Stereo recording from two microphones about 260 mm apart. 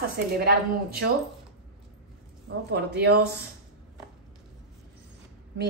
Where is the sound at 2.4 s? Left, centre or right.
Right.